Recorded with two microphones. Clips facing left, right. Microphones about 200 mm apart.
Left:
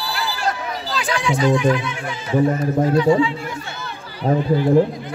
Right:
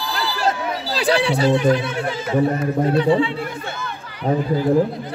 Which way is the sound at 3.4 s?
50° right (ahead or behind).